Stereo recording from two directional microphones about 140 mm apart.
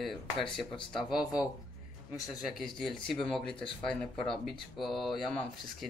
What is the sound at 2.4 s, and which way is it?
A man's voice, centre (ahead or behind).